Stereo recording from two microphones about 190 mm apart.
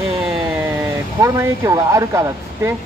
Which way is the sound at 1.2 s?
15° right (ahead or behind).